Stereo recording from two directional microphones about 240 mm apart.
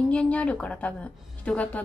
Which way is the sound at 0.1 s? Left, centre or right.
Centre.